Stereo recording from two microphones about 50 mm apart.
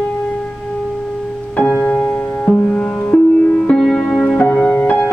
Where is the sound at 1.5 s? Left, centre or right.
Left.